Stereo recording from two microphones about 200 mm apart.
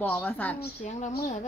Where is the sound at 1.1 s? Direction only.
45° left (ahead or behind).